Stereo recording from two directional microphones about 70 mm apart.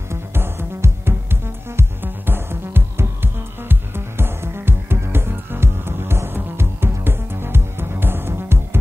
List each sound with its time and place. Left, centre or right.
0.1 s music: right